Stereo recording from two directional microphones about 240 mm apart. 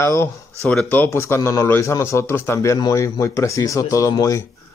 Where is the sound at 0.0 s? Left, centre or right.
Centre.